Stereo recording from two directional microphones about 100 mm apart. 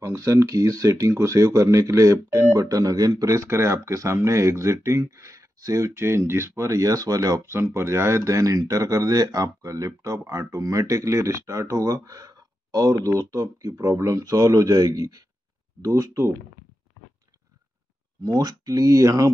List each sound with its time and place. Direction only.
0.0 s speech: 30° right (ahead or behind)
18.2 s speech: 40° right (ahead or behind)